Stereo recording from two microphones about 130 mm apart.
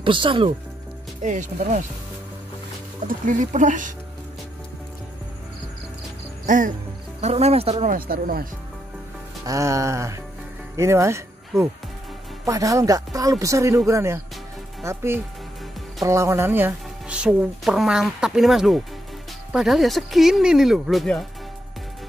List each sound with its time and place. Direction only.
0.0 s speech: 40° right (ahead or behind)
1.2 s speech: 75° right (ahead or behind)
3.1 s speech: 85° right
6.4 s speech: 85° right
7.2 s speech: 55° right (ahead or behind)
7.8 s speech: 90° right
9.5 s speech: 25° right (ahead or behind); by 21.3 s centre (ahead or behind)